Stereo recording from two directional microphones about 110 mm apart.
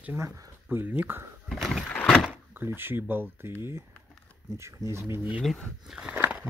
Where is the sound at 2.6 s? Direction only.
20° right (ahead or behind).